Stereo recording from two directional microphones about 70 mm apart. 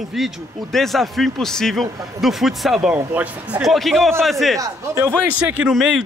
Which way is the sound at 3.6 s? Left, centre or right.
Centre.